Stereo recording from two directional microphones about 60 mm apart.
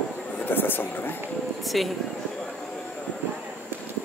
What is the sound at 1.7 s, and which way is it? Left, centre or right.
Speech, centre.